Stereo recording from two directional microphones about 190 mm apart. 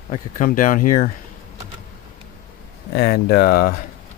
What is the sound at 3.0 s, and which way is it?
Speech, 55° left (ahead or behind).